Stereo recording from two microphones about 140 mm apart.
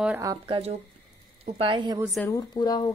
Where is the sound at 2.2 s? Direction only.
25° left (ahead or behind).